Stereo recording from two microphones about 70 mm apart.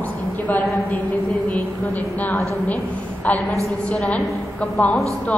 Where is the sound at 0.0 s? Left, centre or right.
Left.